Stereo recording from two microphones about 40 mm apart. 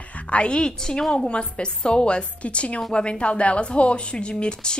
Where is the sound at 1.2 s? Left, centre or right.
Left.